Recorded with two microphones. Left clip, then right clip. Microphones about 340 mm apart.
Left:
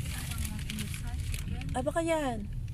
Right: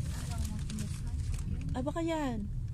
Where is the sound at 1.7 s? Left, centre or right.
Left.